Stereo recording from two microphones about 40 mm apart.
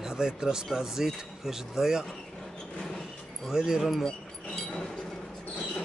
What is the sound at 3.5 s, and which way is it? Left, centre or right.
Speech, centre.